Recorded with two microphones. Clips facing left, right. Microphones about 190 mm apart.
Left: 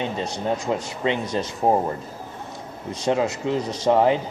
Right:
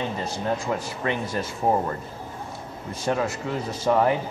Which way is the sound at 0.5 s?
20° left (ahead or behind).